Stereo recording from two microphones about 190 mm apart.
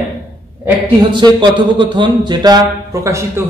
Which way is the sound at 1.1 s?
25° right (ahead or behind).